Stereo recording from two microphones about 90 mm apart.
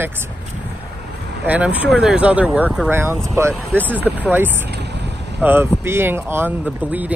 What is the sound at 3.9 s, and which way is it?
Speech, 20° right (ahead or behind).